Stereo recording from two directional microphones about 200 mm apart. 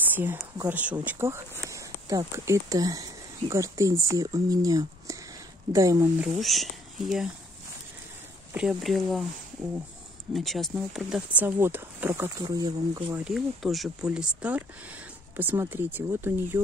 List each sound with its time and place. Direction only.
0.1 s speech: 10° right (ahead or behind)
6.2 s speech: centre (ahead or behind)
8.5 s speech: centre (ahead or behind)
10.3 s speech: centre (ahead or behind); by 13.2 s 15° right (ahead or behind)
13.2 s speech: centre (ahead or behind)